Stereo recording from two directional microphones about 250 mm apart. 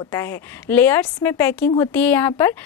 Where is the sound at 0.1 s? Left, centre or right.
Centre.